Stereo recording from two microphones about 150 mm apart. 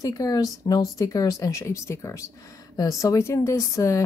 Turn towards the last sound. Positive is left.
turn(degrees=20)  # may be behind; listen again after turning